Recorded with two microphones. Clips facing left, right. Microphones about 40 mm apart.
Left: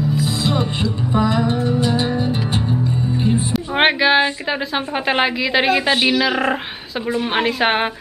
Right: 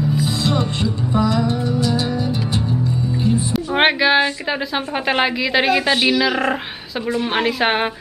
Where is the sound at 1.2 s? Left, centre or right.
Left.